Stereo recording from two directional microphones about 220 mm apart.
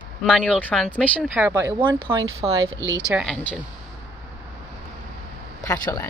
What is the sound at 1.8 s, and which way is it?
Speech, 20° right (ahead or behind).